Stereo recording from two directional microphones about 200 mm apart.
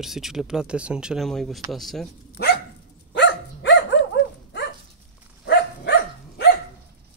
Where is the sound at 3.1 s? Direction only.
60° left (ahead or behind).